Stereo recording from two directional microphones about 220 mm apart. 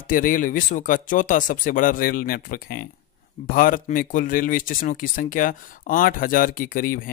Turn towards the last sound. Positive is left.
turn(degrees=40)  # may be behind; listen again after turning